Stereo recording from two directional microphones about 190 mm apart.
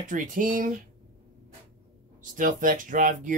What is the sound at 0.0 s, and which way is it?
Speech, 45° right (ahead or behind).